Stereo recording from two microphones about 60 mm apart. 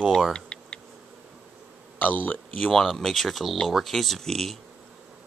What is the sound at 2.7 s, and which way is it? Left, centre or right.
Speech, centre.